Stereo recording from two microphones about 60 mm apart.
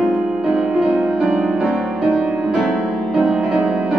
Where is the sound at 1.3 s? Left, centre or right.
Centre.